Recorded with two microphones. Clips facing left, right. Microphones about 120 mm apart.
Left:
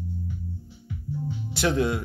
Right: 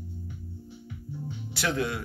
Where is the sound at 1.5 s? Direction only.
25° left (ahead or behind).